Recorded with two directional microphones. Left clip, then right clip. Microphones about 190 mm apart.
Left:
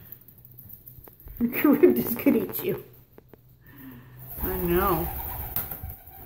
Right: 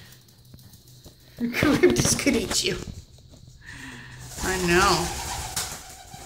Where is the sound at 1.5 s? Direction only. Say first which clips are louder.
Even; 20° left (ahead or behind).